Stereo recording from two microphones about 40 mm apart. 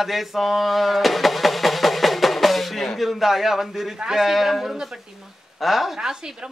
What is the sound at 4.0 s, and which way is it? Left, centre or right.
Speech, centre.